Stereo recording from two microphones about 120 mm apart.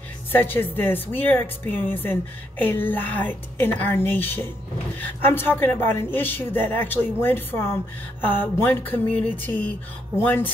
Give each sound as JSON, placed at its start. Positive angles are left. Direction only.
{"t": 0.3, "sound": "a woman's voice", "side_deg": 15}